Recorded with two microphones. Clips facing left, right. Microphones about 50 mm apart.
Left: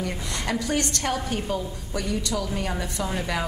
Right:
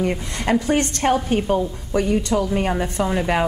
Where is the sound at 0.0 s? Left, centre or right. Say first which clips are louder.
Right 7 dB; right.